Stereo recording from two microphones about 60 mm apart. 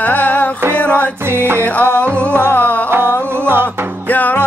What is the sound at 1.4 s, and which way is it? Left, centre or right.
Music, right.